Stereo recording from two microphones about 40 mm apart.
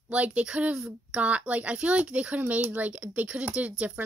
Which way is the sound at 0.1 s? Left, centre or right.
Right.